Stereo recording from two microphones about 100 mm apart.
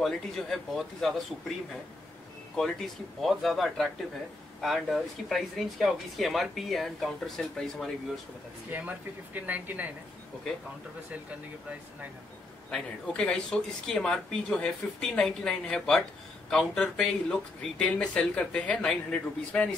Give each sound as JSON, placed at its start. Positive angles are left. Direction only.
{"t": 0.0, "sound": "speech", "side_deg": 5}
{"t": 2.5, "sound": "speech", "side_deg": 5}
{"t": 8.7, "sound": "speech", "side_deg": -15}
{"t": 13.1, "sound": "speech", "side_deg": 10}